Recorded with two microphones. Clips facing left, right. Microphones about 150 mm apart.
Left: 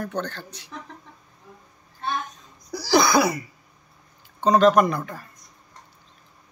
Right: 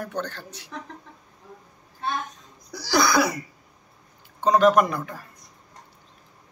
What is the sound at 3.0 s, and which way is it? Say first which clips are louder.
Cough: left 1 dB; 25° left (ahead or behind).